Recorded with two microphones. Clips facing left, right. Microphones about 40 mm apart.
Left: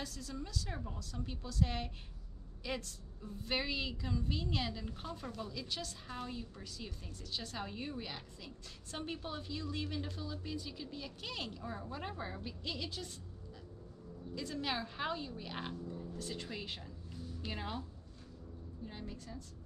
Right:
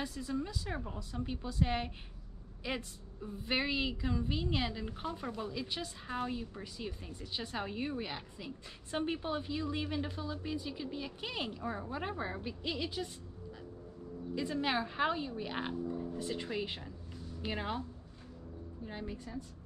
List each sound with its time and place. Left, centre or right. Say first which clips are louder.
0.0 s a woman's voice: right 7 dB; right
14.3 s a woman's voice: right 5 dB; centre
18.9 s a woman's voice: right 5 dB; centre